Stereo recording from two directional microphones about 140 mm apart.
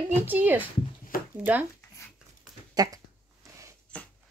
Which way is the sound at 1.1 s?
90° left.